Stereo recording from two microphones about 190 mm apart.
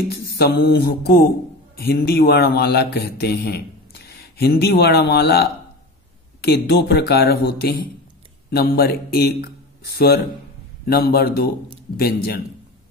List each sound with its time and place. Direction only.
0.1 s a man's voice: 55° left (ahead or behind)